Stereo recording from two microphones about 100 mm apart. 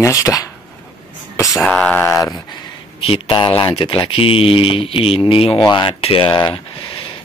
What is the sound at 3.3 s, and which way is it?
Speech, 50° left (ahead or behind).